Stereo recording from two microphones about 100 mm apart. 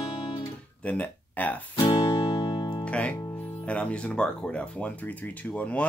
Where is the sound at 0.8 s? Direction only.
15° left (ahead or behind).